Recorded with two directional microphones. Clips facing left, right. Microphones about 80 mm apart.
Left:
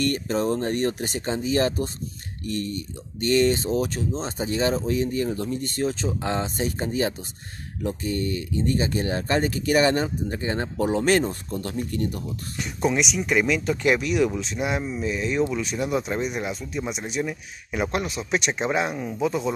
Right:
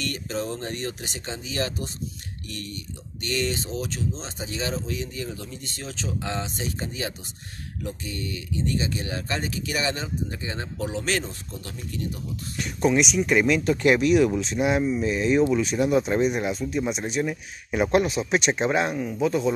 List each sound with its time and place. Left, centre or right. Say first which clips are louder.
0.0 s speech: left 6 dB; left
12.5 s speech: right 2 dB; centre
15.6 s speech: right 4 dB; centre